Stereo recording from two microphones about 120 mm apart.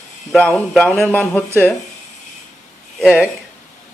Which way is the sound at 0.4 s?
10° left (ahead or behind).